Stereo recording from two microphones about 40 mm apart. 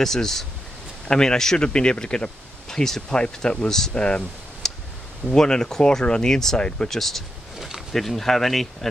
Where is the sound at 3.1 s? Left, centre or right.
Left.